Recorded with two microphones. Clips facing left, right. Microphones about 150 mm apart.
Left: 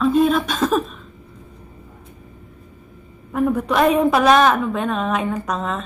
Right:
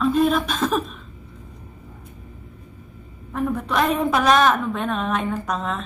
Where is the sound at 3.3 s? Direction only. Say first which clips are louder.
Left 4 dB; 5° left (ahead or behind).